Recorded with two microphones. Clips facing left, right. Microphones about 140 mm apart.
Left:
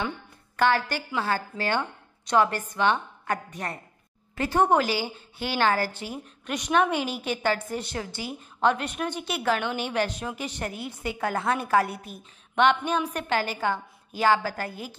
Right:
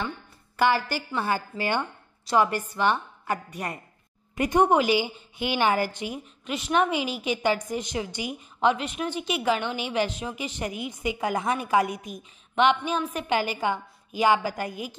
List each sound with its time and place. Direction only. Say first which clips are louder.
0.6 s a woman's voice: even; 10° right (ahead or behind)
4.8 s a woman's voice: right 4 dB; 40° left (ahead or behind)
5.6 s a woman's voice: even; 15° right (ahead or behind)